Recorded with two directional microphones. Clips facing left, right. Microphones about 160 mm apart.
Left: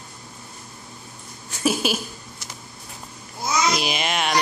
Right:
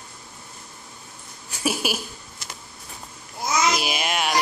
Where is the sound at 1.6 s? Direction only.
10° right (ahead or behind).